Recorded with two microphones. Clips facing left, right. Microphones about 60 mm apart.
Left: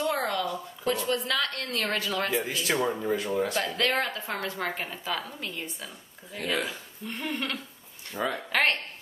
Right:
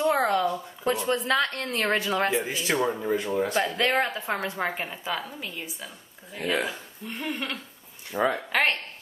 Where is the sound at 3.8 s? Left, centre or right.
Right.